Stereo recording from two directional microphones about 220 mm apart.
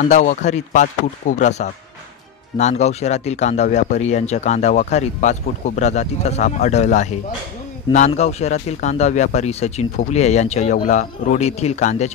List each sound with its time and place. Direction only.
0.1 s speech: 35° left (ahead or behind)